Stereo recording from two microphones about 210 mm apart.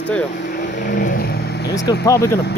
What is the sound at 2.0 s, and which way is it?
Speech, 15° left (ahead or behind).